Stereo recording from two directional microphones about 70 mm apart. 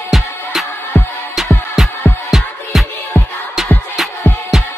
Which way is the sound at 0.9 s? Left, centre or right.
Left.